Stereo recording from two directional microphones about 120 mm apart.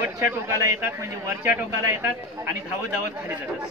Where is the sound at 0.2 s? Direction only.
25° right (ahead or behind).